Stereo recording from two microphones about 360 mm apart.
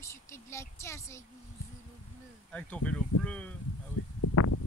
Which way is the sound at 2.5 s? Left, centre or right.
Centre.